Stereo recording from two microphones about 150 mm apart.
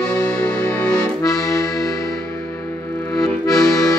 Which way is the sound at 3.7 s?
25° left (ahead or behind).